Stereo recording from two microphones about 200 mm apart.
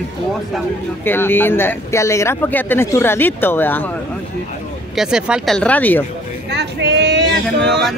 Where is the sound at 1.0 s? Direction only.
10° left (ahead or behind).